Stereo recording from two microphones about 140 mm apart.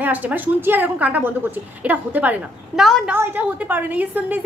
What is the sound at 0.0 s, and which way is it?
A woman's voice, 10° right (ahead or behind).